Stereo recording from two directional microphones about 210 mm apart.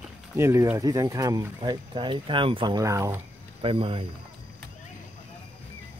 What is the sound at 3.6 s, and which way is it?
Speech, 25° right (ahead or behind).